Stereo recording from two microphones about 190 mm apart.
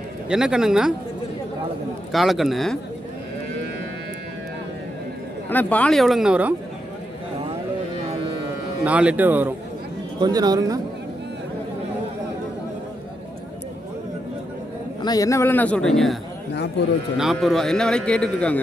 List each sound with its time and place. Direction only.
0.3 s a man's voice: 5° right (ahead or behind)
2.1 s a man's voice: centre (ahead or behind)
5.5 s a man's voice: 10° left (ahead or behind)
8.8 s speech: 5° right (ahead or behind)
10.2 s speech: 20° right (ahead or behind)
15.0 s a man's voice: 20° left (ahead or behind); by 16.2 s centre (ahead or behind)
17.2 s a man's voice: centre (ahead or behind)